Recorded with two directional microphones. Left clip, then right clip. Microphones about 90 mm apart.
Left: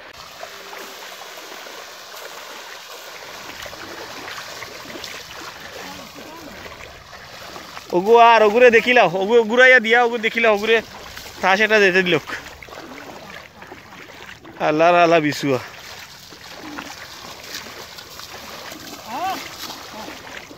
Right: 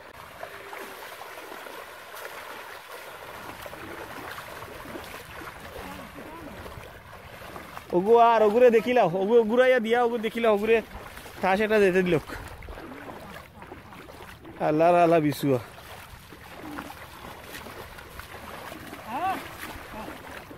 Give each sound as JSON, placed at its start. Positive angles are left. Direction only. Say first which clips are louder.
{"t": 8.1, "sound": "speech", "louder": "left 7 dB", "side_deg": 25}
{"t": 9.2, "sound": "speech", "louder": "left 7 dB", "side_deg": 10}
{"t": 14.6, "sound": "speech", "louder": "left 6 dB", "side_deg": 10}